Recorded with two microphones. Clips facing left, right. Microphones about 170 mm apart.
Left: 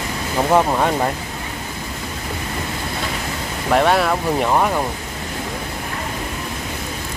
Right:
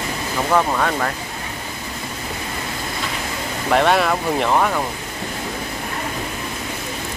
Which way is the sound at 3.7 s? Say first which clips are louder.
Left 1 dB; 5° left (ahead or behind).